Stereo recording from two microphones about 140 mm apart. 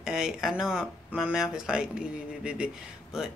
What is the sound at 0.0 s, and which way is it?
Speech, 5° right (ahead or behind).